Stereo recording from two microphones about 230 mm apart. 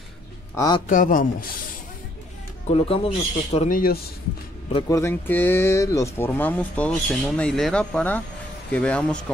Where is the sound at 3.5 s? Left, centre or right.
Left.